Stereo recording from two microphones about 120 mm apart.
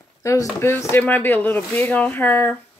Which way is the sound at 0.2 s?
25° left (ahead or behind).